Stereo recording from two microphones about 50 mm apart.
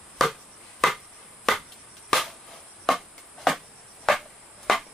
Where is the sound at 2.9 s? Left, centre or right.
Centre.